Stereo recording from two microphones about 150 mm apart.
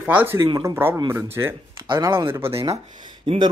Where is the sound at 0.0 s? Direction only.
10° right (ahead or behind).